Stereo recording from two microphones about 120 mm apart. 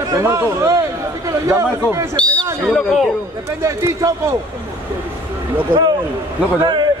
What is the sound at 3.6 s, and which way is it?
Speech, 25° right (ahead or behind).